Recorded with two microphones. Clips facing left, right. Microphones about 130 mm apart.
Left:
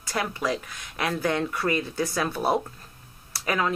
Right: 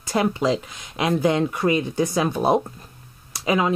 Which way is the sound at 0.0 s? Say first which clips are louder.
Right 7 dB; 20° right (ahead or behind).